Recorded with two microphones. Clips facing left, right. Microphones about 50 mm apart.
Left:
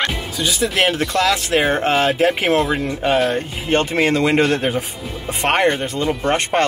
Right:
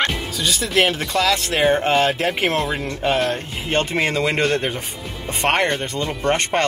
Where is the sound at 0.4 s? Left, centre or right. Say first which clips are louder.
Left 1 dB; centre.